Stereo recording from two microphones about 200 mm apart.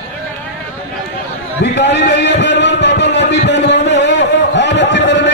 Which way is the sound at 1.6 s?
60° left (ahead or behind).